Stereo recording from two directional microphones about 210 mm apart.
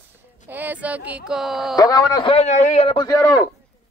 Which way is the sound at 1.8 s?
20° left (ahead or behind).